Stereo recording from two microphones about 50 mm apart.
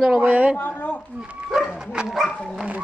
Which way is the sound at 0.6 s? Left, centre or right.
Left.